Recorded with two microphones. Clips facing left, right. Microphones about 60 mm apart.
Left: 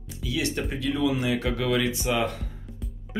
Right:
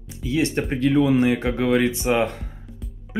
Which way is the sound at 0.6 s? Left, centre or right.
Right.